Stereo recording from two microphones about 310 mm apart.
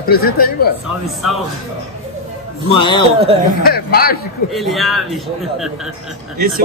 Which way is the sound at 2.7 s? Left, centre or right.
Centre.